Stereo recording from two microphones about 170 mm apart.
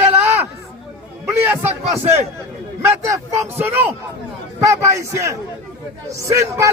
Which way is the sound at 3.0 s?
15° right (ahead or behind).